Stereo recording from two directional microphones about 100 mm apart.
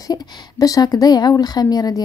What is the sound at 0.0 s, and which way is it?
A woman's voice, 40° left (ahead or behind).